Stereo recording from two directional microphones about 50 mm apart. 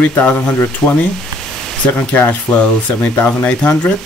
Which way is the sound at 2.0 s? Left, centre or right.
Left.